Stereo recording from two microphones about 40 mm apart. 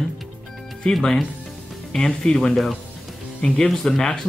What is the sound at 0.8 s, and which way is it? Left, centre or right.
Speech, left.